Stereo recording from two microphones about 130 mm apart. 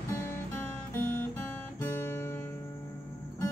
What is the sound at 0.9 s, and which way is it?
Guitar, 15° left (ahead or behind).